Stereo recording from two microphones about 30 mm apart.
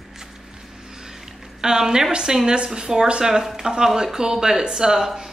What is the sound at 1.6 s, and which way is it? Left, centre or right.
A woman's voice, centre.